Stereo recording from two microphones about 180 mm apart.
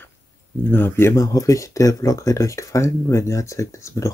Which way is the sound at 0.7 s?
10° left (ahead or behind).